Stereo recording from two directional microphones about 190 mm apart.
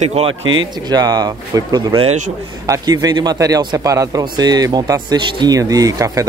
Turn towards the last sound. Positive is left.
turn(degrees=-15)  # may be behind; listen again after turning